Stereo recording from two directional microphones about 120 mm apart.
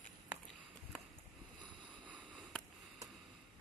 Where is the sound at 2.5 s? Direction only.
5° left (ahead or behind).